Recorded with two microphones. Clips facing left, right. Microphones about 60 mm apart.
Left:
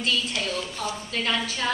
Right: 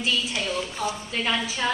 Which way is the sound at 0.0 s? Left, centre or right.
Centre.